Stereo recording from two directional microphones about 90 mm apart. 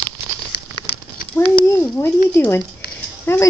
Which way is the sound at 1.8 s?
20° left (ahead or behind).